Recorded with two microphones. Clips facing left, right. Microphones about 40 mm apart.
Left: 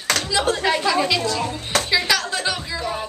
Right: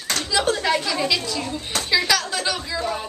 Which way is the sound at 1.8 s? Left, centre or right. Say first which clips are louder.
Right 2 dB; centre.